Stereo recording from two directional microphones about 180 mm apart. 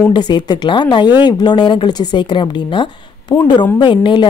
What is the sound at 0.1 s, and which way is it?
A woman's voice, 25° left (ahead or behind).